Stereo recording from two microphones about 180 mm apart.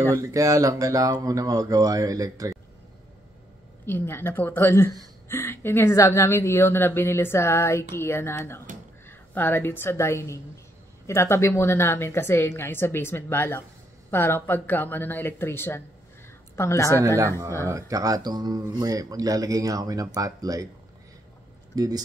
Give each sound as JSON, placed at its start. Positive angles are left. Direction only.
{"t": 0.1, "sound": "speech", "side_deg": -20}
{"t": 3.8, "sound": "a woman's voice", "side_deg": 10}
{"t": 17.6, "sound": "speech", "side_deg": -20}
{"t": 21.7, "sound": "speech", "side_deg": -20}